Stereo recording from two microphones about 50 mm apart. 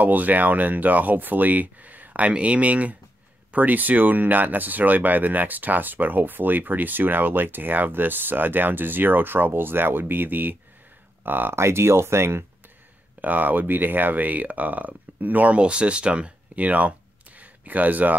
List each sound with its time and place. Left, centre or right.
0.0 s speech: right
11.5 s speech: right
13.2 s speech: right
17.4 s a sound: right